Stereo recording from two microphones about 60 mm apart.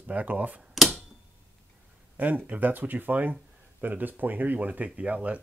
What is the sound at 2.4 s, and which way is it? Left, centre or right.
Speech, right.